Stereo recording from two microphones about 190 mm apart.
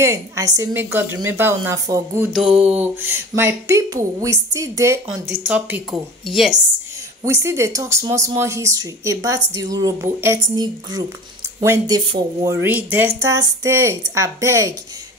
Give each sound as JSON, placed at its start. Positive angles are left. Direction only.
{"t": 0.0, "sound": "speech", "side_deg": -15}
{"t": 5.5, "sound": "a woman's voice", "side_deg": -5}
{"t": 7.2, "sound": "speech", "side_deg": -15}
{"t": 12.5, "sound": "speech", "side_deg": -10}